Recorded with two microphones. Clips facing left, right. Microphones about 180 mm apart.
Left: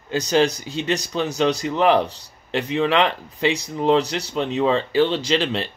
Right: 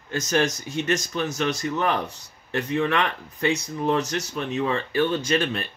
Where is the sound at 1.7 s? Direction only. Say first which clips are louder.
Left 7 dB; 90° left.